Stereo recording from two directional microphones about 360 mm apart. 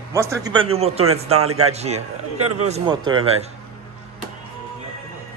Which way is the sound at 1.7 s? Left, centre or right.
Centre.